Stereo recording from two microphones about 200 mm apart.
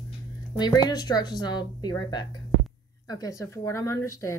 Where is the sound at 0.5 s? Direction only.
20° left (ahead or behind).